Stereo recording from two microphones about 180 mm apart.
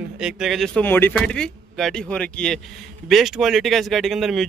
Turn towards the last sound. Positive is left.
turn(degrees=0)  # may be behind; listen again after turning